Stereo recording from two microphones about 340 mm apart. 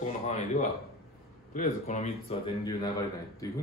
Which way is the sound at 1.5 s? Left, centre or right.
Left.